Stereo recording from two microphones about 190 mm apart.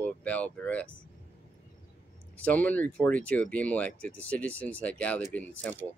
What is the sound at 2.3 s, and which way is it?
Speech, 10° left (ahead or behind).